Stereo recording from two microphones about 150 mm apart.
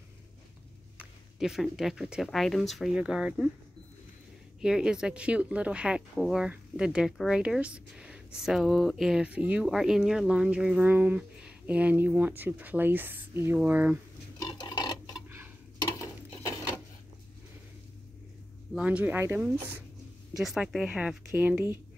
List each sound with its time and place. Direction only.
0.9 s speech: 5° right (ahead or behind)
4.6 s speech: 5° right (ahead or behind)
15.1 s tick-tock: 15° right (ahead or behind)
16.0 s a sound: 20° left (ahead or behind)
18.8 s speech: 10° right (ahead or behind)
20.3 s speech: 5° right (ahead or behind)